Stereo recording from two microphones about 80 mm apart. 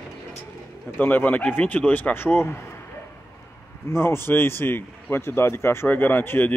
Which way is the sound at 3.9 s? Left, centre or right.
Left.